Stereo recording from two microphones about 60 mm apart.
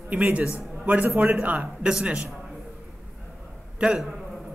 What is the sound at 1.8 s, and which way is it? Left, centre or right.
Speech, centre.